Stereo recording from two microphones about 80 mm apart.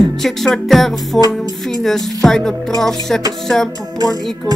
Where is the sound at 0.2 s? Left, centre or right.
Centre.